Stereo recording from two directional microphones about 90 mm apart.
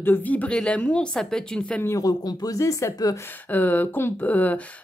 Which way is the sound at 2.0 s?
45° left (ahead or behind).